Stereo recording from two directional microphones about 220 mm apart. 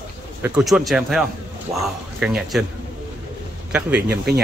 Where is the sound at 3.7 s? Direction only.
5° right (ahead or behind).